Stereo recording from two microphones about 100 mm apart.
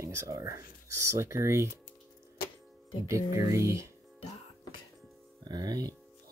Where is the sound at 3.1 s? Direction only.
30° right (ahead or behind).